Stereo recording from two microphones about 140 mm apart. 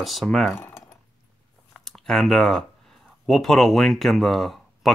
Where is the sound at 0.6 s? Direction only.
15° left (ahead or behind).